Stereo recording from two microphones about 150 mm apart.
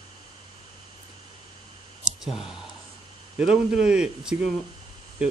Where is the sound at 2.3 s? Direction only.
Centre (ahead or behind).